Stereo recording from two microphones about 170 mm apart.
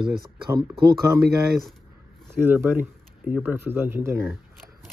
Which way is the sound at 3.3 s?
15° right (ahead or behind).